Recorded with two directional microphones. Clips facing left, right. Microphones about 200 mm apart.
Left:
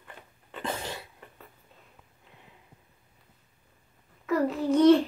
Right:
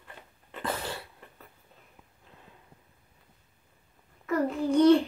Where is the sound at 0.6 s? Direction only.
20° left (ahead or behind).